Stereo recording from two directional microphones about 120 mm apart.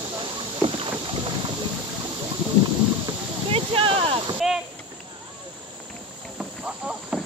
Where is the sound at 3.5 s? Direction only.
50° right (ahead or behind).